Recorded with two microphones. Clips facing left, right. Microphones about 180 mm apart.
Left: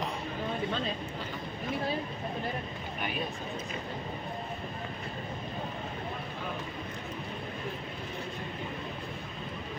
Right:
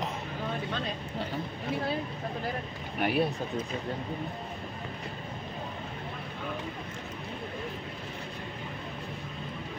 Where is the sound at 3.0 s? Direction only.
70° right (ahead or behind).